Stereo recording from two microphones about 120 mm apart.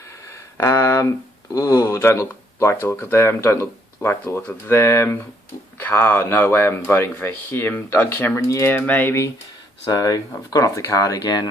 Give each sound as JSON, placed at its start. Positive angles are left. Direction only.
{"t": 0.3, "sound": "a sound", "side_deg": 25}
{"t": 1.5, "sound": "speech", "side_deg": 25}
{"t": 9.8, "sound": "speech", "side_deg": 30}